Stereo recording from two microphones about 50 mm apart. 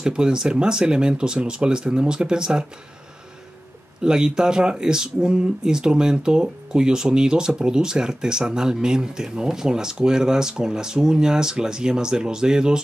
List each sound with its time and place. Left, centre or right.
0.0 s speech: centre
4.0 s speech: centre